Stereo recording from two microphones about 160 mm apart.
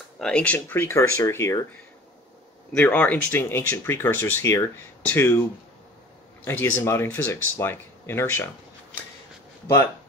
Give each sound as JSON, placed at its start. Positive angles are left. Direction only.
{"t": 0.2, "sound": "speech", "side_deg": 5}
{"t": 2.7, "sound": "speech", "side_deg": 10}
{"t": 6.4, "sound": "speech", "side_deg": 15}